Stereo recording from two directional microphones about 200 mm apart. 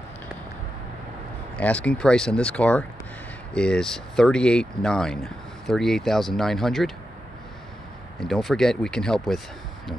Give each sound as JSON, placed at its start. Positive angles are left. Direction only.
{"t": 1.6, "sound": "speech", "side_deg": 5}
{"t": 8.2, "sound": "speech", "side_deg": 0}